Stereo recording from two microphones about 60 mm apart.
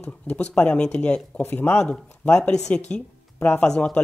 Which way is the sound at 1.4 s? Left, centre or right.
Left.